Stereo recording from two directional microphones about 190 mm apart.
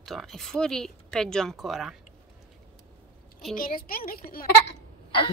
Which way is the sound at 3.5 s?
50° left (ahead or behind).